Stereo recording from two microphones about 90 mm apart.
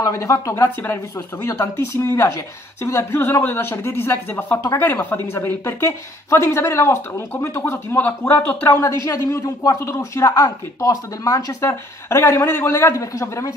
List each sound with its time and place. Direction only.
0.0 s speech: 40° left (ahead or behind)